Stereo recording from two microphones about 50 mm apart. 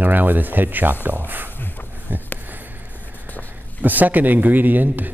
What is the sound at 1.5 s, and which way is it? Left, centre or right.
Dog, left.